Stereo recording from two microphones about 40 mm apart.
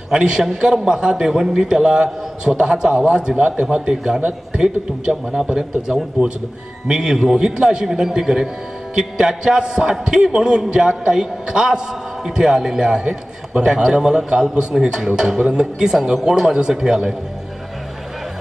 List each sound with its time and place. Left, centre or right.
0.1 s a man's voice: centre